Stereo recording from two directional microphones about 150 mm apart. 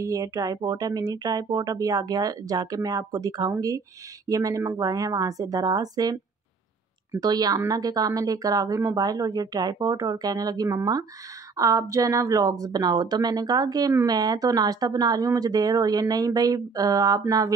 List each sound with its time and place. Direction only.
0.0 s speech: 20° right (ahead or behind)
7.2 s speech: 25° right (ahead or behind)